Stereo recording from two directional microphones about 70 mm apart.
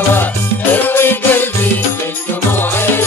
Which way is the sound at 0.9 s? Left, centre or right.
Left.